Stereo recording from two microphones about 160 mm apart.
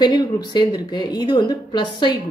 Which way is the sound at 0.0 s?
25° left (ahead or behind).